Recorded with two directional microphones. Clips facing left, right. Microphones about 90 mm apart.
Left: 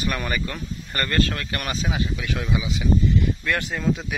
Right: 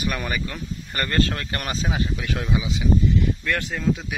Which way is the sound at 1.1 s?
25° right (ahead or behind).